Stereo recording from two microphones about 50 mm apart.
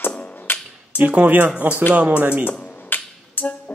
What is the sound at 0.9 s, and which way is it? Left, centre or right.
Speech, right.